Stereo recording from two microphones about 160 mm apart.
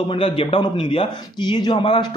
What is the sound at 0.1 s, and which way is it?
A man's voice, 35° left (ahead or behind).